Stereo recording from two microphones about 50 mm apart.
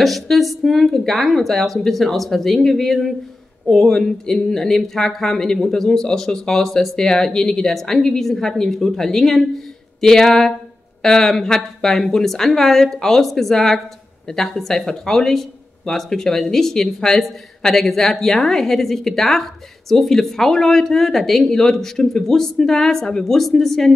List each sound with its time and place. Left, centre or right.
0.0 s speech: centre